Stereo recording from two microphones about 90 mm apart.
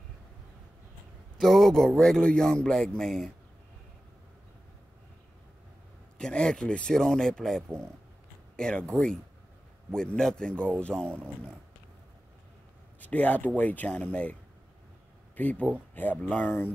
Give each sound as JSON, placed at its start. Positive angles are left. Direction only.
{"t": 1.4, "sound": "a man's voice", "side_deg": 0}
{"t": 6.1, "sound": "a man's voice", "side_deg": 10}
{"t": 13.0, "sound": "a man's voice", "side_deg": 15}
{"t": 15.3, "sound": "a man's voice", "side_deg": 15}